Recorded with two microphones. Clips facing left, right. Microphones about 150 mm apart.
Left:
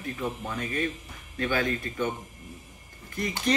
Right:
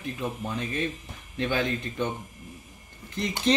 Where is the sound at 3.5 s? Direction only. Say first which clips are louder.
Right 3 dB; 25° right (ahead or behind).